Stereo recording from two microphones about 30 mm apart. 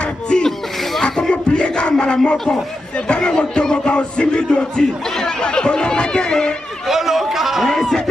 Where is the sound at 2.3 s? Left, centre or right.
Left.